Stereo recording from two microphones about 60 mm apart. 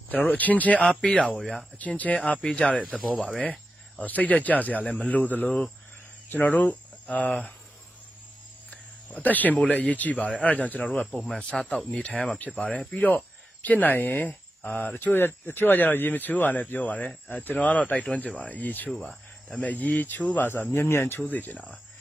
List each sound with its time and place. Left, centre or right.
0.3 s speech: left
8.6 s cricket: left
9.7 s speech: left
11.2 s speech: centre
11.7 s speech: left
21.2 s speech: left